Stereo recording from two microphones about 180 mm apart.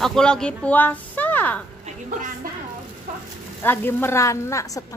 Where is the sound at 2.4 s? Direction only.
50° right (ahead or behind).